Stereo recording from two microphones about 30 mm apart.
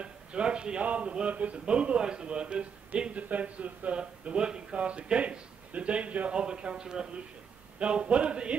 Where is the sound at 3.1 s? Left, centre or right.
Right.